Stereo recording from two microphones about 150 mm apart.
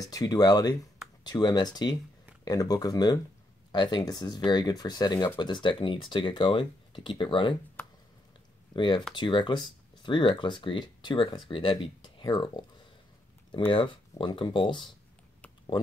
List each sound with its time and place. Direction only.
0.0 s speech: 25° left (ahead or behind)
7.8 s a sound: 15° left (ahead or behind)
8.7 s speech: 30° left (ahead or behind)
13.7 s speech: 30° left (ahead or behind)